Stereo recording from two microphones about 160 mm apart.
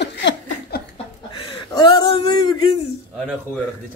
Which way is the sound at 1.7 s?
25° left (ahead or behind).